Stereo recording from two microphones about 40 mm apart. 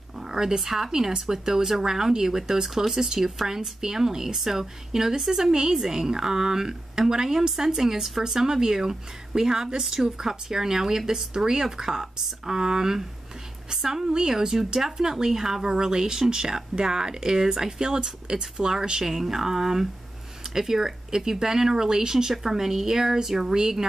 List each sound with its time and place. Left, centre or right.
0.2 s a woman's voice: centre